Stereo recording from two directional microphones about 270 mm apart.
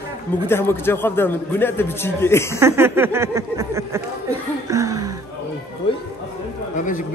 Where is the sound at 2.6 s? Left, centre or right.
Centre.